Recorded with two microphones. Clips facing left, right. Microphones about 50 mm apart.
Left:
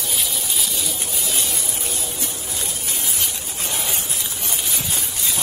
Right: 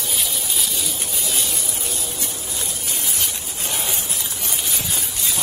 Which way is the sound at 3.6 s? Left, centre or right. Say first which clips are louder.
Even; right.